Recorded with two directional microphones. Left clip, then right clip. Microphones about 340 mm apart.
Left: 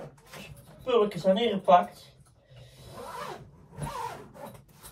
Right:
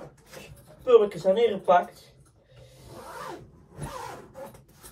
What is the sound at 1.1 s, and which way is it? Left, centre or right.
Speech, centre.